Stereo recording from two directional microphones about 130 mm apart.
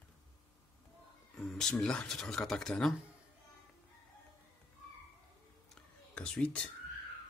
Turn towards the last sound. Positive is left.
turn(degrees=10)  # may be behind; listen again after turning